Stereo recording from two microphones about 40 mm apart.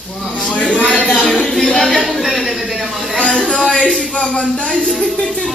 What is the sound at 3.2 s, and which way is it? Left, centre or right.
Speech, left.